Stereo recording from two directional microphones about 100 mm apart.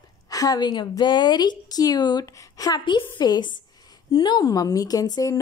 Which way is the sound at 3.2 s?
45° left (ahead or behind).